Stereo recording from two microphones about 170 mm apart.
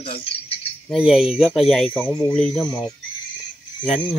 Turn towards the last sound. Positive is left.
turn(degrees=0)  # may be behind; listen again after turning